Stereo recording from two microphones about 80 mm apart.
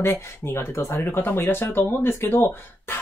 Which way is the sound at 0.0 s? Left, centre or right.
Left.